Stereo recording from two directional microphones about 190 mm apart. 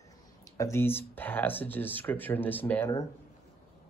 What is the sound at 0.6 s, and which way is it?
Speech, 15° left (ahead or behind).